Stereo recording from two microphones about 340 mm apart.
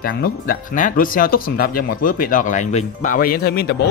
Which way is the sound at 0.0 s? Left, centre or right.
Left.